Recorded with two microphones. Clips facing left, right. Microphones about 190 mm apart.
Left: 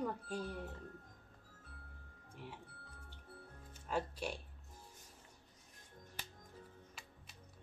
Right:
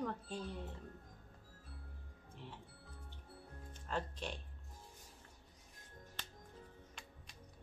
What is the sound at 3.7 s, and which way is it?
Music, 10° left (ahead or behind).